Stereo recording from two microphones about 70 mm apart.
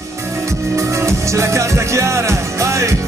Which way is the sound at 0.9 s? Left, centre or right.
Right.